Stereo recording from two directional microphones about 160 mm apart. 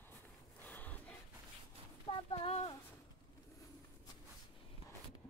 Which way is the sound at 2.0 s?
35° left (ahead or behind).